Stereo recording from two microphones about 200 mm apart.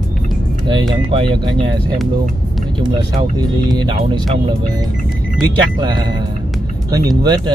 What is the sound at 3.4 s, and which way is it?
Speech, 20° right (ahead or behind).